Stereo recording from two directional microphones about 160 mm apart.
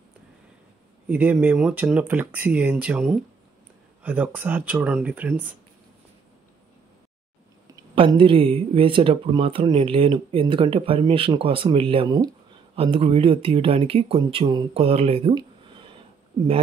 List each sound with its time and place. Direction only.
1.0 s speech: 10° right (ahead or behind)
7.9 s speech: 35° right (ahead or behind)